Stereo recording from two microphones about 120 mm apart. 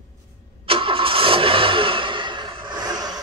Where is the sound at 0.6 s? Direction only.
50° right (ahead or behind).